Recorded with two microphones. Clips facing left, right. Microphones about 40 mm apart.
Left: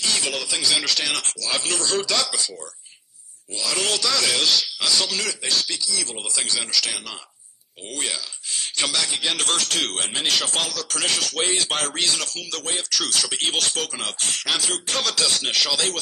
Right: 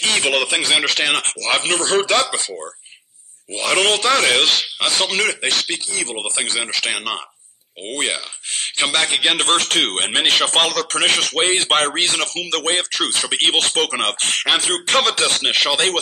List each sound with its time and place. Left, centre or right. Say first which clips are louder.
0.0 s a man's voice: right 8 dB; right